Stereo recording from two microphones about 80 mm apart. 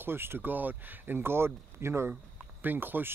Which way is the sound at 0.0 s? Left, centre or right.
Right.